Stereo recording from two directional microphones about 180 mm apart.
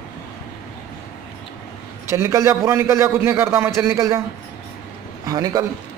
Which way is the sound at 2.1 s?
15° right (ahead or behind).